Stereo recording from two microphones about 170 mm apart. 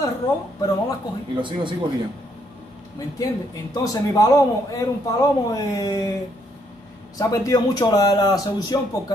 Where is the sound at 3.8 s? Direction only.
20° left (ahead or behind).